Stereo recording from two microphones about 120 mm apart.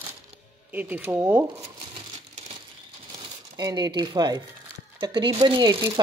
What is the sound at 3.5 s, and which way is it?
Speech, 35° right (ahead or behind).